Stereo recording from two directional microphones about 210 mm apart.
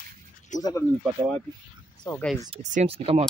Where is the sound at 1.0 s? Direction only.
Centre (ahead or behind).